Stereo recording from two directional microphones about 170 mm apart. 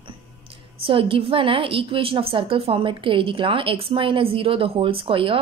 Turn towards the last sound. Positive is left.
turn(degrees=-30)  # may be behind; listen again after turning